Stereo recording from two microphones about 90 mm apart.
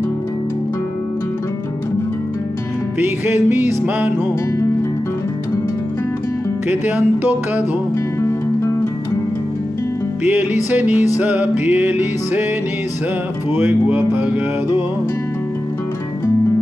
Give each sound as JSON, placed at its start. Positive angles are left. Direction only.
{"t": 3.0, "sound": "music", "side_deg": -25}
{"t": 6.7, "sound": "music", "side_deg": -20}
{"t": 8.2, "sound": "music", "side_deg": 35}
{"t": 10.2, "sound": "music", "side_deg": -20}
{"t": 13.5, "sound": "music", "side_deg": -25}